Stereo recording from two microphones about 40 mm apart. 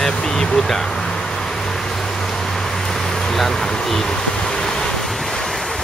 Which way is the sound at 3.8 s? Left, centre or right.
Centre.